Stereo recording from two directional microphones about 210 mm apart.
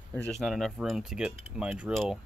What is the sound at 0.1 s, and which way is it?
Speech, 5° left (ahead or behind).